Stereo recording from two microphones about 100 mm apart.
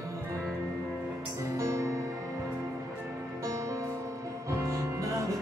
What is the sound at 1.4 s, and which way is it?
Music, 30° right (ahead or behind).